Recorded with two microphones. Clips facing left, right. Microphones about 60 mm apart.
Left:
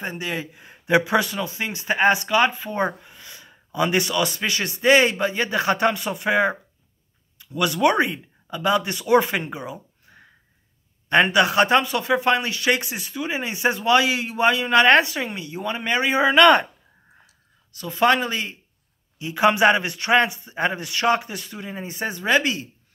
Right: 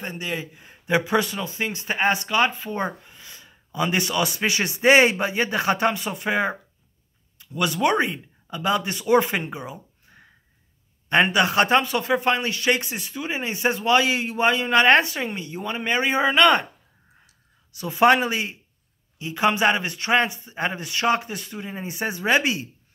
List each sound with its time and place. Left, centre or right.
0.0 s speech: centre
4.1 s speech: centre
5.1 s speech: centre
17.7 s speech: centre
19.1 s speech: centre